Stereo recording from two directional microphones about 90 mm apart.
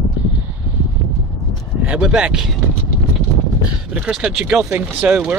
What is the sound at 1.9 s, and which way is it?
Speech, 10° right (ahead or behind).